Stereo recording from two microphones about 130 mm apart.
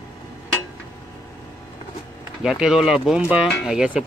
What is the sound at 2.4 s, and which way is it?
Speech, 5° right (ahead or behind).